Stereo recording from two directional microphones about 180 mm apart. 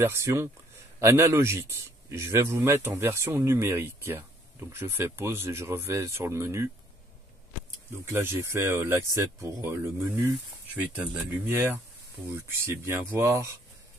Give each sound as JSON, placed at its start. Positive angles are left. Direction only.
{"t": 0.0, "sound": "speech", "side_deg": -15}
{"t": 8.1, "sound": "speech", "side_deg": -15}